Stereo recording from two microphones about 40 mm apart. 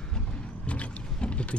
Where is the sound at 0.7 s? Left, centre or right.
Left.